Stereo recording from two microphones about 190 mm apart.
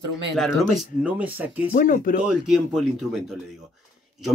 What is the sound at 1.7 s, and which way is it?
Speech, 50° left (ahead or behind).